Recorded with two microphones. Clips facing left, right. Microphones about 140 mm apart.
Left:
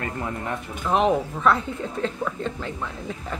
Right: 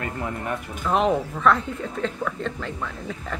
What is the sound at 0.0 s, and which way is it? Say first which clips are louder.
Speech: even; 25° right (ahead or behind).